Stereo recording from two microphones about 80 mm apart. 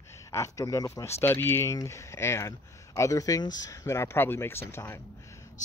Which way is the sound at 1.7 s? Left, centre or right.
Left.